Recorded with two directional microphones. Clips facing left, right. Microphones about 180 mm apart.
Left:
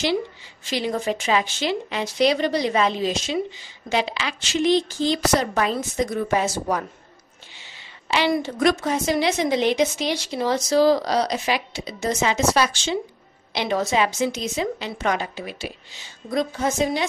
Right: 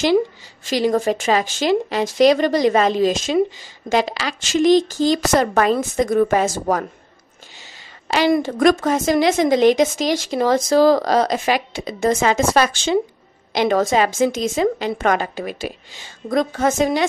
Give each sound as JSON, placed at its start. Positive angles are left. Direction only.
{"t": 0.7, "sound": "a woman's voice", "side_deg": -45}
{"t": 8.1, "sound": "a woman's voice", "side_deg": -45}